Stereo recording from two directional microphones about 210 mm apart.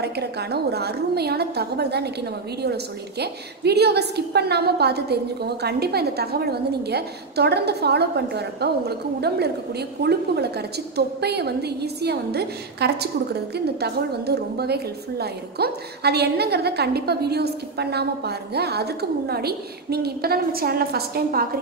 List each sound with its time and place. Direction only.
0.0 s a woman's voice: 50° right (ahead or behind)